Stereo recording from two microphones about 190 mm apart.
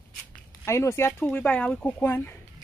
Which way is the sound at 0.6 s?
15° left (ahead or behind).